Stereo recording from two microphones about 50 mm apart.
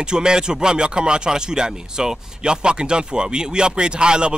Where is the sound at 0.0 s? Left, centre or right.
Centre.